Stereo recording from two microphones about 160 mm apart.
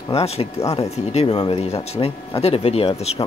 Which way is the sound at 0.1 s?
40° left (ahead or behind).